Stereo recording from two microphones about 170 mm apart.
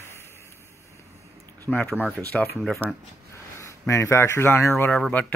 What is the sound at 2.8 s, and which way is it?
Speech, 10° right (ahead or behind).